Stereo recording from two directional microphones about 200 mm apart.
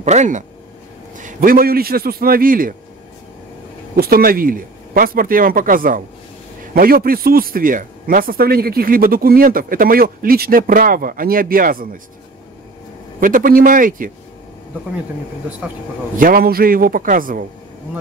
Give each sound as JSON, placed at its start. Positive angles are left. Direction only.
{"t": 0.0, "sound": "a man's voice", "side_deg": -35}
{"t": 3.9, "sound": "a man's voice", "side_deg": -45}
{"t": 13.2, "sound": "a man's voice", "side_deg": -45}
{"t": 16.2, "sound": "a man's voice", "side_deg": -45}